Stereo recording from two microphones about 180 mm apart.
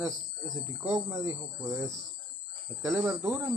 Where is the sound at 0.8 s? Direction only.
20° right (ahead or behind).